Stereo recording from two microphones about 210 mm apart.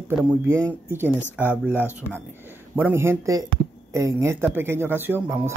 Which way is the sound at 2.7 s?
10° right (ahead or behind).